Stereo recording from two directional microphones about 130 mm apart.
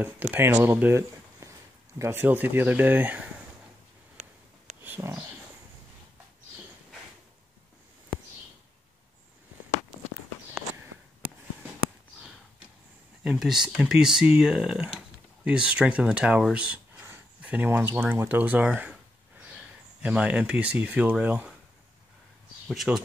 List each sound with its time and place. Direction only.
0.3 s speech: 15° right (ahead or behind)
4.2 s a sound: 60° right (ahead or behind)
4.8 s a sound: 15° right (ahead or behind)
13.2 s speech: 5° right (ahead or behind)
20.0 s speech: 10° right (ahead or behind)
22.7 s speech: centre (ahead or behind)